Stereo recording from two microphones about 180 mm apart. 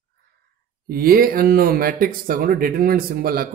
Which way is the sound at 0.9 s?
55° right (ahead or behind).